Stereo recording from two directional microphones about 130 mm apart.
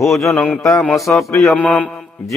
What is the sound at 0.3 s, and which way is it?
Speech, 10° left (ahead or behind).